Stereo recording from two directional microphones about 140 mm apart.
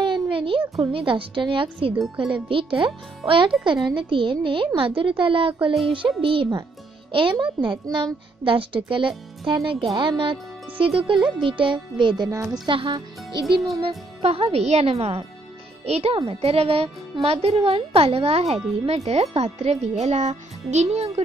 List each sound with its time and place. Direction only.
0.0 s a child's voice: 35° right (ahead or behind)